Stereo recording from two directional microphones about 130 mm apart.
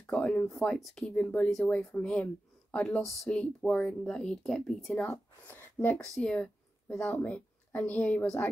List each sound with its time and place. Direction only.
0.0 s speech: 10° left (ahead or behind)
5.9 s speech: 5° left (ahead or behind)